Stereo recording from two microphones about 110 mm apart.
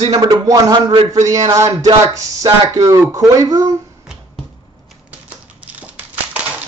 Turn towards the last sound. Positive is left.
turn(degrees=-15)  # may be behind; listen again after turning